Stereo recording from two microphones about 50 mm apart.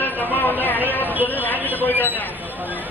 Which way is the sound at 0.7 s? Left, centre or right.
Right.